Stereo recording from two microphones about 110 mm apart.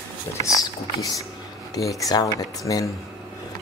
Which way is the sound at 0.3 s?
30° left (ahead or behind).